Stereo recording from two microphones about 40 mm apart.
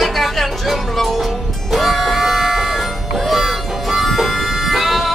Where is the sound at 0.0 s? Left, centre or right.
Centre.